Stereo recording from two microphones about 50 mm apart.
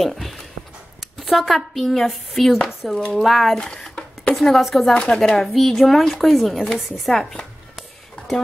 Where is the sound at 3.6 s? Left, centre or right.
Centre.